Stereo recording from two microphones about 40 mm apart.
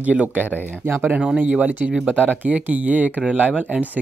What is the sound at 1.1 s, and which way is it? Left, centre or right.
Speech, right.